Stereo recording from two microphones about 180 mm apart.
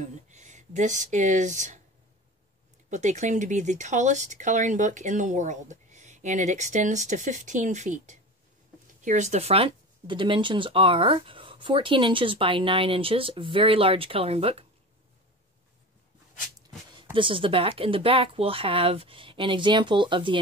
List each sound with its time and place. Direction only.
0.0 s speech: 40° right (ahead or behind)
2.9 s speech: 40° right (ahead or behind)
16.9 s speech: 30° right (ahead or behind)